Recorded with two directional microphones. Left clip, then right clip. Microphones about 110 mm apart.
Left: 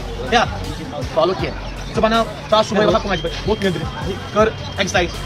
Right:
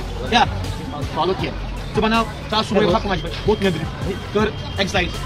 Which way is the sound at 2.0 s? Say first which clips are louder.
Left 3 dB; 30° left (ahead or behind).